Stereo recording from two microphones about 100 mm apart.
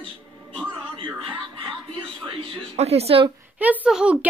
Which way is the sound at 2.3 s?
75° right (ahead or behind).